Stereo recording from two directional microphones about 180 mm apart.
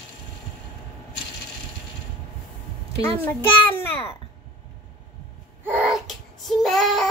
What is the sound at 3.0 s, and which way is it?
Child singing, 10° left (ahead or behind).